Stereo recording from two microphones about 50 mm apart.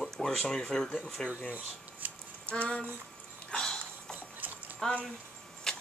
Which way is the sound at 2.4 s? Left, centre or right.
Left.